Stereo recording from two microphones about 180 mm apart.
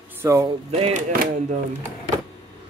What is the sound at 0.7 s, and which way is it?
Speech, 35° right (ahead or behind).